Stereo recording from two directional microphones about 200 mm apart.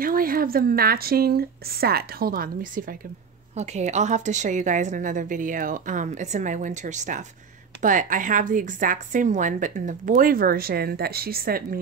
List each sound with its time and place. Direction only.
0.0 s a woman's voice: 45° right (ahead or behind)